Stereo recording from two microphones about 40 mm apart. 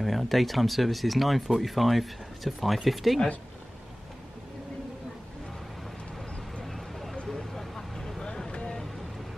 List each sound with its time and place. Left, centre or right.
0.0 s speech: centre
6.6 s vehicle: centre; by 8.7 s left